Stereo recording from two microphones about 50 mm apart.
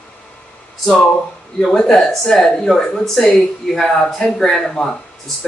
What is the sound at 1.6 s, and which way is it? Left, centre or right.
Speech, centre.